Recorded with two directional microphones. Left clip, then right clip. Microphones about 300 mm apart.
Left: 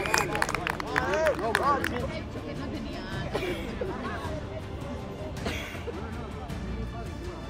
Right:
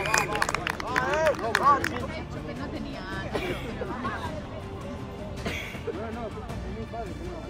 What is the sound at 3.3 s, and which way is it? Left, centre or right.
Music, left.